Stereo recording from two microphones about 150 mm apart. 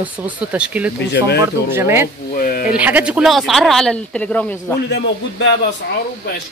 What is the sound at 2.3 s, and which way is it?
Speech, 70° left (ahead or behind).